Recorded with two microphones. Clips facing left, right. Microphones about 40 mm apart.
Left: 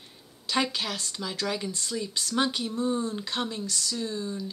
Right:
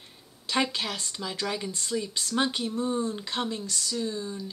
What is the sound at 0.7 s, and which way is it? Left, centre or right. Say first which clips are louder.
A woman's voice: even; centre.